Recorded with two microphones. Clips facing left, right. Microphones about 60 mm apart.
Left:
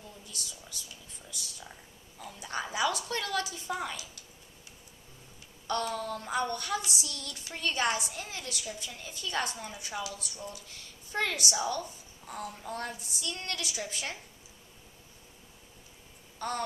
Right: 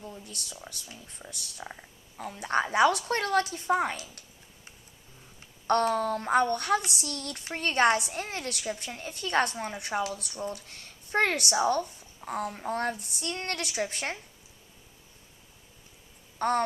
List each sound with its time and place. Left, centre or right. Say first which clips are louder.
0.2 s a woman's voice: right 3 dB; right
5.7 s a woman's voice: right 7 dB; right
16.3 s a sound: right 8 dB; right